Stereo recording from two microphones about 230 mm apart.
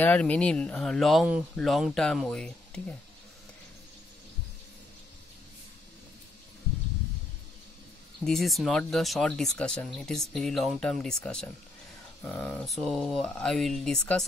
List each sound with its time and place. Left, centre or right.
0.0 s speech: centre
8.2 s speech: centre